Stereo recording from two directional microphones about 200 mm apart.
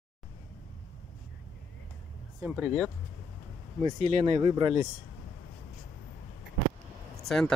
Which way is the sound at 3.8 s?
35° right (ahead or behind).